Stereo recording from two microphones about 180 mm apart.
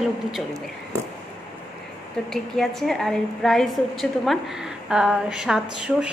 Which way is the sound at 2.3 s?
Centre (ahead or behind).